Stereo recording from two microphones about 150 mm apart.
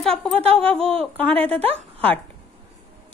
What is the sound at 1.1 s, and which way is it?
Speech, 10° left (ahead or behind).